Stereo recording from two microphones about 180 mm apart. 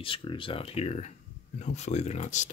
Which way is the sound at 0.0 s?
30° left (ahead or behind).